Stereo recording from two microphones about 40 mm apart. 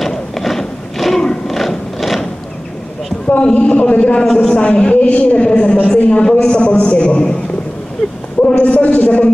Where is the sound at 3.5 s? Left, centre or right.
Left.